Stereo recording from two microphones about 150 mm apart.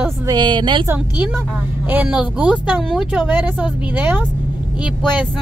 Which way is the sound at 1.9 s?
10° right (ahead or behind).